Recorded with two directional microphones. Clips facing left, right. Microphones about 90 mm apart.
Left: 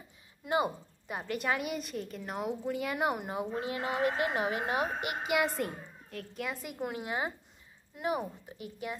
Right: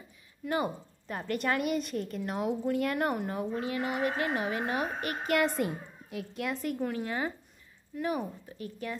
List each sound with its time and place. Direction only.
0.5 s a woman's voice: 15° left (ahead or behind)
3.5 s speech: 25° left (ahead or behind)
5.5 s a woman's voice: 5° right (ahead or behind)
6.4 s speech: 5° left (ahead or behind)
6.9 s speech: 20° left (ahead or behind)